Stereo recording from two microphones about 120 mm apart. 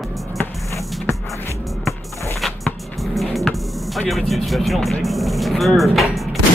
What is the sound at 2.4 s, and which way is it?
Music, centre (ahead or behind).